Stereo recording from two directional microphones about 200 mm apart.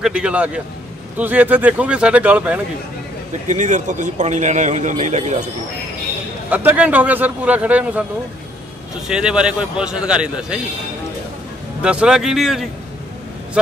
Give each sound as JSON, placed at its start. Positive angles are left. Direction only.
{"t": 0.0, "sound": "a man's voice", "side_deg": -5}
{"t": 3.4, "sound": "a man's voice", "side_deg": -35}
{"t": 6.5, "sound": "a man's voice", "side_deg": -10}
{"t": 9.0, "sound": "a man's voice", "side_deg": -5}
{"t": 11.8, "sound": "a man's voice", "side_deg": -5}